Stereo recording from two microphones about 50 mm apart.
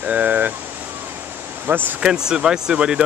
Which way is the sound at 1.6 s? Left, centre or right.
Right.